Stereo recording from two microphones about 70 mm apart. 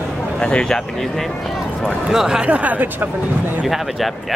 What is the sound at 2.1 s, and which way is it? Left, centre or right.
Speech, centre.